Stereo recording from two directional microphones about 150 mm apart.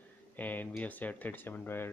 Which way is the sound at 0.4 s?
10° left (ahead or behind).